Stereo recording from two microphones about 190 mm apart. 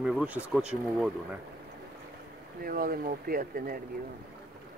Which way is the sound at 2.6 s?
50° right (ahead or behind).